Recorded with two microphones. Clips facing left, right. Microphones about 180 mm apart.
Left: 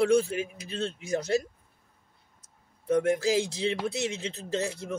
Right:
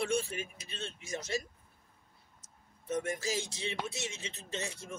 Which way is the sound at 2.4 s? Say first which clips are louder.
Left 11 dB; 60° left (ahead or behind).